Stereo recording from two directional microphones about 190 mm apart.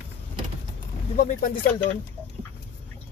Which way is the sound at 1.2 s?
45° left (ahead or behind).